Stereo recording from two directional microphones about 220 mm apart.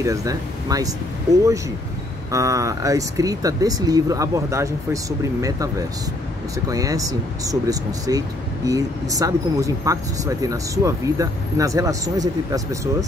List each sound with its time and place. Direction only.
0.0 s speech: 15° right (ahead or behind)